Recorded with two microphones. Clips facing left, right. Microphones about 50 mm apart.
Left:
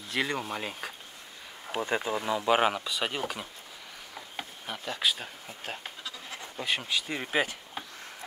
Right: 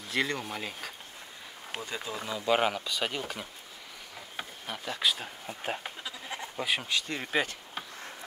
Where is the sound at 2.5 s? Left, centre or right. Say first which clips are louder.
Even; centre.